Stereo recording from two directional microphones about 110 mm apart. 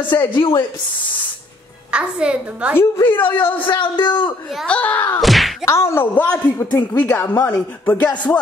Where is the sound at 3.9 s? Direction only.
45° left (ahead or behind).